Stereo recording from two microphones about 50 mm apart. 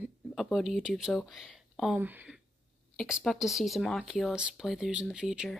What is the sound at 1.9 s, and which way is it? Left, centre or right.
Speech, right.